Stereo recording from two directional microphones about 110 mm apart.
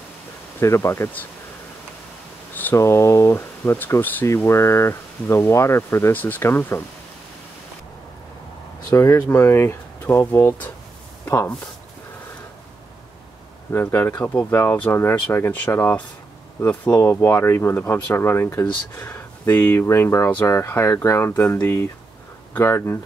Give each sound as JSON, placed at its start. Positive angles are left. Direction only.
{"t": 0.6, "sound": "speech", "side_deg": 25}
{"t": 2.5, "sound": "speech", "side_deg": 20}
{"t": 8.9, "sound": "speech", "side_deg": 25}
{"t": 13.7, "sound": "speech", "side_deg": 20}